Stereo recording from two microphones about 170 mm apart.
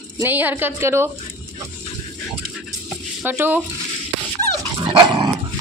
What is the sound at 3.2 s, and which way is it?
Speech, 10° right (ahead or behind).